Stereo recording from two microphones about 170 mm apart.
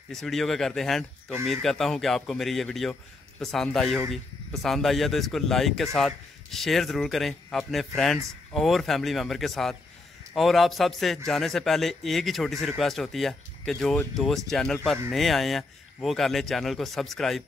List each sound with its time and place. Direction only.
0.1 s a man's voice: centre (ahead or behind)